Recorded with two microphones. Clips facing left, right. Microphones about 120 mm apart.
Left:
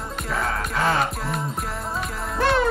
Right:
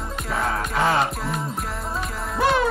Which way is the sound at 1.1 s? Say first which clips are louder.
Even; centre (ahead or behind).